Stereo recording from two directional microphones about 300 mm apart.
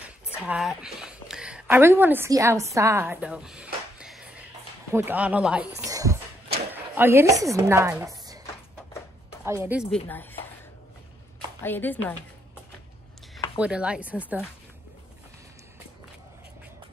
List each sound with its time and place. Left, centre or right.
0.0 s a sound: centre
4.9 s speech: centre
5.9 s a sound: centre
6.7 s speech: centre
9.4 s speech: centre
10.0 s speech: centre
11.6 s a woman's voice: centre
13.6 s speech: centre